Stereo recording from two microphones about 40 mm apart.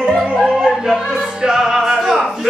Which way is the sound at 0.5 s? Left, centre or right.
Centre.